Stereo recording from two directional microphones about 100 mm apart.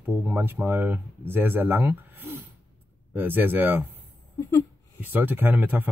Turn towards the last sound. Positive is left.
turn(degrees=-20)  # may be behind; listen again after turning